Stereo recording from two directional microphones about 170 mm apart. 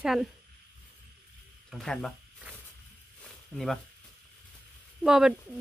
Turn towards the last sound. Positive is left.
turn(degrees=-5)  # may be behind; listen again after turning